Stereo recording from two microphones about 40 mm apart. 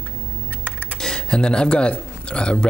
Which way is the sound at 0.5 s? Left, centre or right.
Right.